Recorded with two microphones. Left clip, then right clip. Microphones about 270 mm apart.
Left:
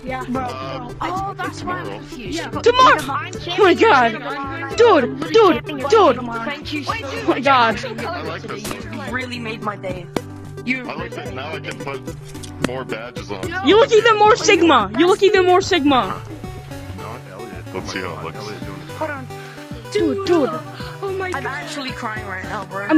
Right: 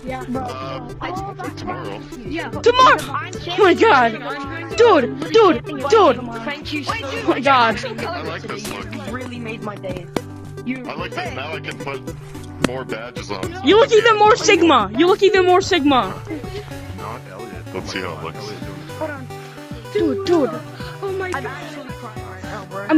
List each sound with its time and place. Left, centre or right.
0.5 s speech: centre
9.1 s speech: left
10.9 s speech: centre
12.6 s speech: centre
17.7 s speech: centre
20.0 s music: centre